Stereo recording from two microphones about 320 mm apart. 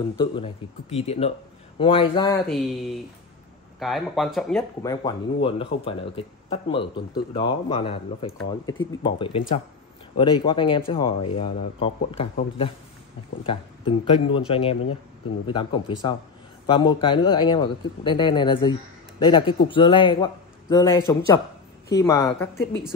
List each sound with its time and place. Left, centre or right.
0.0 s a man's voice: centre
2.4 s speech: centre
5.0 s a man's voice: centre